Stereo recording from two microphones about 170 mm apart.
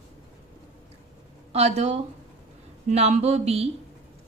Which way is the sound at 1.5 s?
40° right (ahead or behind).